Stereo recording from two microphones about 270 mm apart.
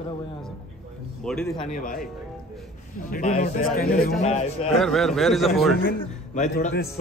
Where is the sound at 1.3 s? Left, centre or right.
Centre.